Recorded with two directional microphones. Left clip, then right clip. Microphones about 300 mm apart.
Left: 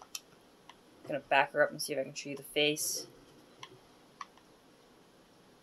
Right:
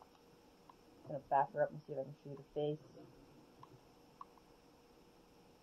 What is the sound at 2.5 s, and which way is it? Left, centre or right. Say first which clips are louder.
Speech: left 10 dB; left.